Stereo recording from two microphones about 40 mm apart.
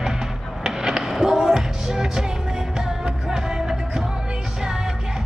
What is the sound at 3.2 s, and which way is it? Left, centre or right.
Music, centre.